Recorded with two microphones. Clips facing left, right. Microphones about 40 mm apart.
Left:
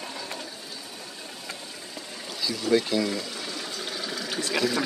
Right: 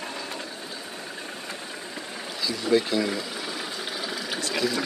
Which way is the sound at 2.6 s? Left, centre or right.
Centre.